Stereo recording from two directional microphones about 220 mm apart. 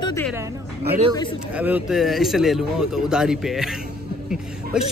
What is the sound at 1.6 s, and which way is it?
A man's voice, 5° right (ahead or behind).